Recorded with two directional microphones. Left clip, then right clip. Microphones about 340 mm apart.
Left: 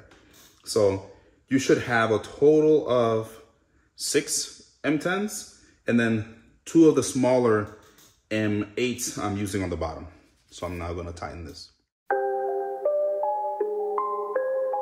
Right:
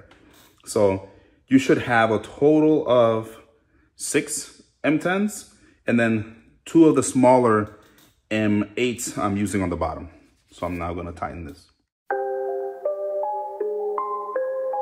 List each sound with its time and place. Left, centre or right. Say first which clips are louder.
0.7 s speech: right 2 dB; centre
3.9 s a sound: right 1 dB; centre
4.8 s a man's voice: right 4 dB; centre
12.1 s ding-dong: even; centre
12.8 s music: left 2 dB; centre